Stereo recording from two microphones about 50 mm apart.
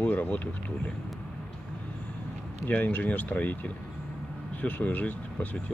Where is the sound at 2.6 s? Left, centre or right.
Left.